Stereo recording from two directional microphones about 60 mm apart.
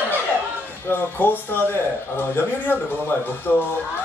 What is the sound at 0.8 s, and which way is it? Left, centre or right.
Speech, left.